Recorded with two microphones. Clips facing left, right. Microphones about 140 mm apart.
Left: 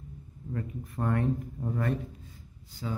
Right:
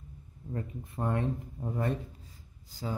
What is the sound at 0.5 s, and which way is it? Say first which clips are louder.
Speech: left 2 dB; 25° right (ahead or behind).